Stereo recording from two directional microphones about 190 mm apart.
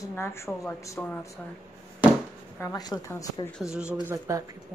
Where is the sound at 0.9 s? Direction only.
Centre (ahead or behind).